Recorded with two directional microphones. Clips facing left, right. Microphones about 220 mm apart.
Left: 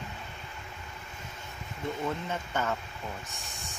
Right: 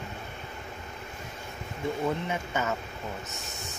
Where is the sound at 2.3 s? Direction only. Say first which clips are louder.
Right 2 dB; 10° right (ahead or behind).